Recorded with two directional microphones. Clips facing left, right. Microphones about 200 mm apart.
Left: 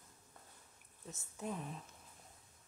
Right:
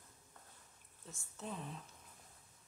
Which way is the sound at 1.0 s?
20° left (ahead or behind).